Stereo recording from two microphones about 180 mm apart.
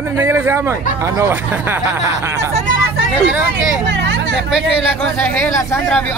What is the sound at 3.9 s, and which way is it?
Hubbub, 75° right (ahead or behind).